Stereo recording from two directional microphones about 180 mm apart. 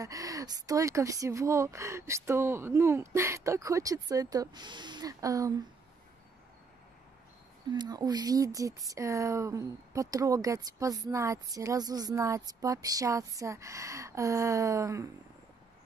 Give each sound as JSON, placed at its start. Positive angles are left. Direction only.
{"t": 0.0, "sound": "speech", "side_deg": -20}
{"t": 7.7, "sound": "speech", "side_deg": -25}